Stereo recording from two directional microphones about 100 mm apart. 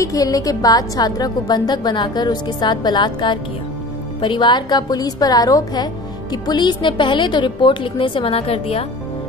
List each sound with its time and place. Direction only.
0.0 s a woman's voice: 35° left (ahead or behind); by 8.8 s 70° left (ahead or behind)